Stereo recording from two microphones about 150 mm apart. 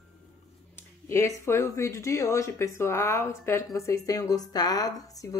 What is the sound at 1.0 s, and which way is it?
Speech, 20° left (ahead or behind).